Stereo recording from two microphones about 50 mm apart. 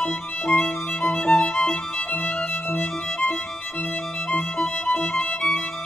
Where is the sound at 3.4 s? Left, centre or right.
Centre.